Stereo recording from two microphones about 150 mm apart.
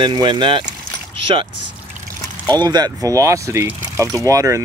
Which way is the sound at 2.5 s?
25° right (ahead or behind).